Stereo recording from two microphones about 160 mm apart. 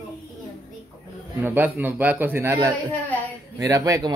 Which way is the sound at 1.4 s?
10° right (ahead or behind).